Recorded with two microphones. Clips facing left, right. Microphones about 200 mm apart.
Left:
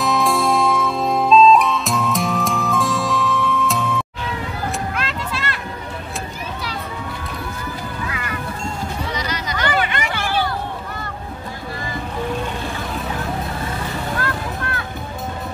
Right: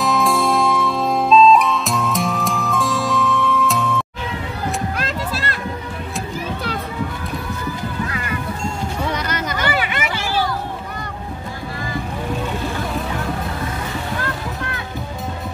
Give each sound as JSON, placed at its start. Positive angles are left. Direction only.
{"t": 0.0, "sound": "music", "side_deg": 0}
{"t": 4.9, "sound": "music", "side_deg": -40}
{"t": 9.1, "sound": "music", "side_deg": -55}
{"t": 9.6, "sound": "a sound", "side_deg": -5}
{"t": 10.1, "sound": "music", "side_deg": 60}